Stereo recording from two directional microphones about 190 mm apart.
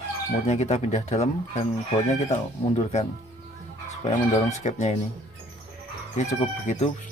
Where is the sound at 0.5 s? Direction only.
35° left (ahead or behind).